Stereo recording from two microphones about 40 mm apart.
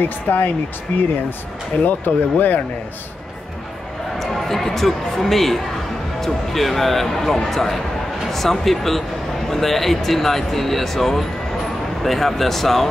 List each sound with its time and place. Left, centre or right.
0.0 s speech: left
4.2 s speech: centre